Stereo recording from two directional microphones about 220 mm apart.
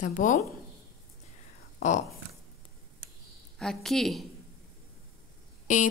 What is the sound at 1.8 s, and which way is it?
Speech, 35° left (ahead or behind).